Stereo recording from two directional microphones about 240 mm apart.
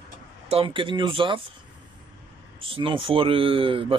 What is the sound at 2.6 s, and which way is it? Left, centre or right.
Speech, right.